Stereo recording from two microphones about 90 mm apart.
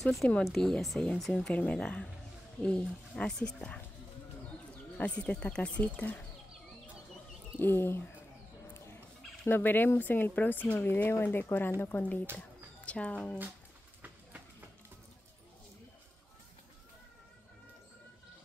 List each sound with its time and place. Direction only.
0.0 s speech: 5° left (ahead or behind)
4.9 s speech: 15° left (ahead or behind)
7.5 s speech: 25° left (ahead or behind)
8.7 s chicken: 30° left (ahead or behind)
9.4 s speech: 20° left (ahead or behind)